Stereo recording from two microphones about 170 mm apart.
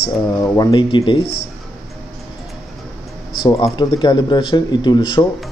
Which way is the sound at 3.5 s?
30° left (ahead or behind).